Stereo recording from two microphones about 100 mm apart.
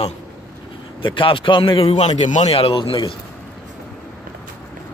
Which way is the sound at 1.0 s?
60° left (ahead or behind).